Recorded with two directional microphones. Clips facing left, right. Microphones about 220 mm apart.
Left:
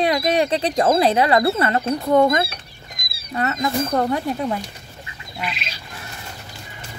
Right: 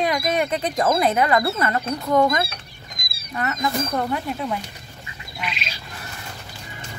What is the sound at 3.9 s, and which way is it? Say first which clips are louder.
Speech: left 4 dB; 40° left (ahead or behind).